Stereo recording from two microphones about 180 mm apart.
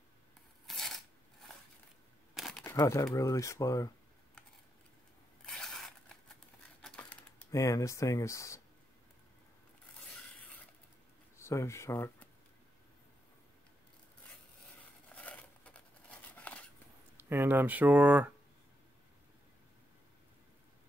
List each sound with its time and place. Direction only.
0.7 s coin: centre (ahead or behind)
2.3 s a sound: centre (ahead or behind)
2.6 s speech: 15° left (ahead or behind)
5.4 s a sound: centre (ahead or behind)
11.3 s speech: 15° left (ahead or behind)
15.0 s scissors: 5° left (ahead or behind)
17.2 s speech: 10° right (ahead or behind)